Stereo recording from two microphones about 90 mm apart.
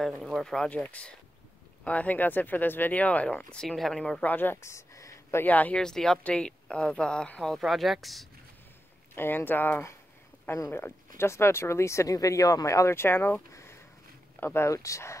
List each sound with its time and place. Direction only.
0.2 s speech: 5° left (ahead or behind)
4.3 s speech: 20° left (ahead or behind)
4.6 s a sound: 35° left (ahead or behind)
5.4 s speech: 20° left (ahead or behind)
5.8 s speech: 5° left (ahead or behind)
9.1 s speech: 25° left (ahead or behind)